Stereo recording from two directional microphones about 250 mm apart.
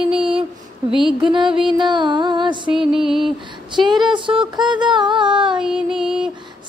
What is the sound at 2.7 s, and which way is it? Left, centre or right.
Music, centre.